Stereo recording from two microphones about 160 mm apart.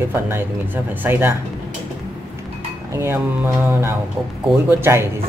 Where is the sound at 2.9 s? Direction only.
15° right (ahead or behind).